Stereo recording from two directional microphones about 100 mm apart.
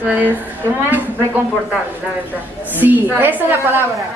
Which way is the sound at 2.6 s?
20° right (ahead or behind).